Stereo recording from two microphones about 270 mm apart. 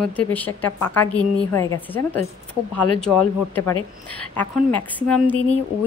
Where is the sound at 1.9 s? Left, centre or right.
Left.